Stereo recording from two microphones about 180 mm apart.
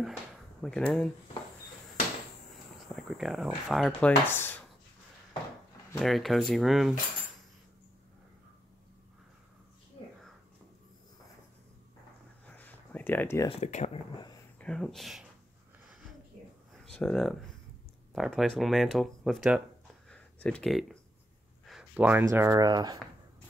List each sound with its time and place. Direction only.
0.6 s speech: 5° left (ahead or behind)
2.9 s speech: centre (ahead or behind)
4.1 s speech: 10° left (ahead or behind)
5.9 s speech: centre (ahead or behind)
12.4 s a sound: 10° left (ahead or behind)
13.5 s speech: 40° left (ahead or behind)
14.6 s speech: 5° left (ahead or behind)
16.8 s speech: 5° left (ahead or behind)
20.1 s a sound: 5° left (ahead or behind)
21.6 s speech: 5° right (ahead or behind); by 22.9 s 20° right (ahead or behind)